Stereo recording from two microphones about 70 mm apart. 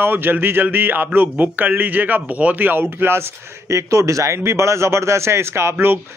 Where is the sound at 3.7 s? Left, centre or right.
Right.